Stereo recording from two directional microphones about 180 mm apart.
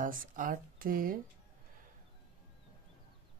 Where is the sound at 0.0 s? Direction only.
50° right (ahead or behind).